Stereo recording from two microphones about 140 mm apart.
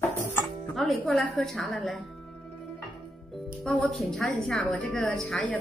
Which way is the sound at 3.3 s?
5° left (ahead or behind).